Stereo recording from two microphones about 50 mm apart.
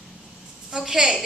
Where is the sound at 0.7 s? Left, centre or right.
Centre.